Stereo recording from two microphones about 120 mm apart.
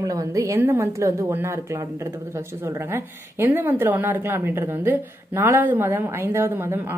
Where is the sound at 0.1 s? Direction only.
25° right (ahead or behind).